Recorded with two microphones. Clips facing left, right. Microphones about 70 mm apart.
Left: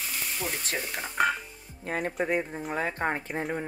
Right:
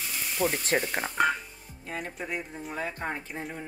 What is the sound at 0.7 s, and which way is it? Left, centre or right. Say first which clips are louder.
Stir: right 5 dB; right.